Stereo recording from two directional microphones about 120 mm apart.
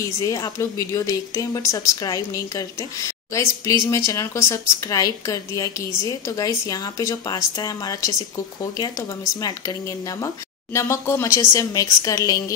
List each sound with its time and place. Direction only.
0.0 s speech: 30° left (ahead or behind)